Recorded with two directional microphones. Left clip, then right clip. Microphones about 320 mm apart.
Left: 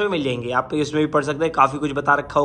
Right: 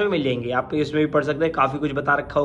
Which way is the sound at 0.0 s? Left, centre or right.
Centre.